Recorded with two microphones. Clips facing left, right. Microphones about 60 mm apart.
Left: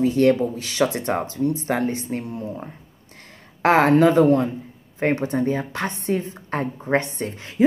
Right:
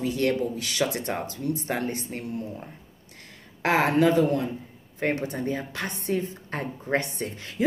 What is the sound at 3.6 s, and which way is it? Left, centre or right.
A woman's voice, left.